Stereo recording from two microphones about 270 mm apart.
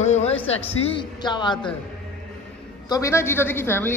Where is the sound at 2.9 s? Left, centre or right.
Centre.